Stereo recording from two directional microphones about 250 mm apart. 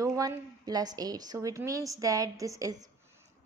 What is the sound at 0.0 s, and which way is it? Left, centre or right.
A woman's voice, centre.